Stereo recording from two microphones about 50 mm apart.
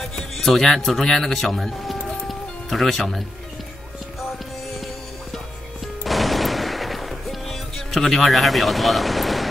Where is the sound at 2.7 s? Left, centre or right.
Centre.